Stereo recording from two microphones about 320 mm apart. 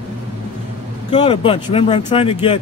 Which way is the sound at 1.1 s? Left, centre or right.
Centre.